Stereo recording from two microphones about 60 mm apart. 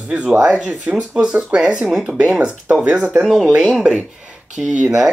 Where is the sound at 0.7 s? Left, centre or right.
Right.